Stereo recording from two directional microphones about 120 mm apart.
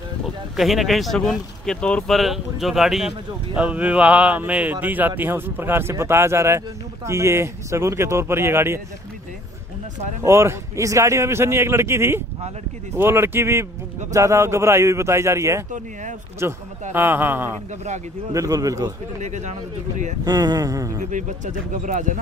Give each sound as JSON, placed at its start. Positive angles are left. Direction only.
{"t": 0.6, "sound": "a man's voice", "side_deg": 0}
{"t": 10.2, "sound": "a man's voice", "side_deg": -20}
{"t": 15.7, "sound": "speech", "side_deg": -90}
{"t": 16.4, "sound": "a man's voice", "side_deg": -20}
{"t": 18.3, "sound": "a man's voice", "side_deg": -30}
{"t": 19.2, "sound": "speech", "side_deg": -75}
{"t": 20.2, "sound": "a man's voice", "side_deg": -30}
{"t": 21.0, "sound": "speech", "side_deg": -90}